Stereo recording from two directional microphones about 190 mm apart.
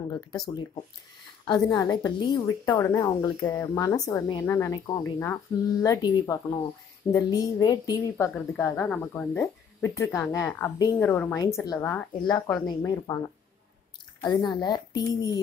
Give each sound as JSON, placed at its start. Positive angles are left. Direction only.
{"t": 1.5, "sound": "a woman's voice", "side_deg": 20}
{"t": 12.6, "sound": "a woman's voice", "side_deg": 20}
{"t": 14.2, "sound": "a woman's voice", "side_deg": 20}